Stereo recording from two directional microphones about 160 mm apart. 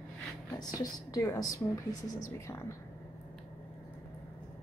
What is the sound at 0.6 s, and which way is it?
A woman's voice, 25° left (ahead or behind).